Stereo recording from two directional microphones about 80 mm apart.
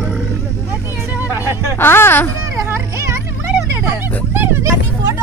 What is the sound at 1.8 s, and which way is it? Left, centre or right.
Music, left.